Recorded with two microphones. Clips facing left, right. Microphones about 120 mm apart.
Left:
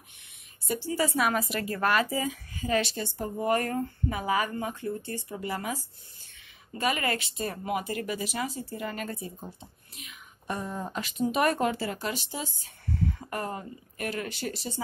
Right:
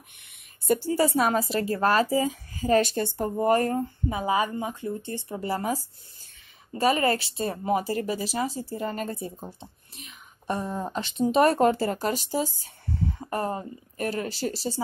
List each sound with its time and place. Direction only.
0.7 s a woman's voice: 45° right (ahead or behind)
3.5 s a woman's voice: 25° right (ahead or behind); by 12.6 s 40° right (ahead or behind)
13.2 s a woman's voice: 30° right (ahead or behind)